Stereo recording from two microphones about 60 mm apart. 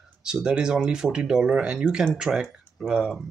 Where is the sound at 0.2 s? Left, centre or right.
Centre.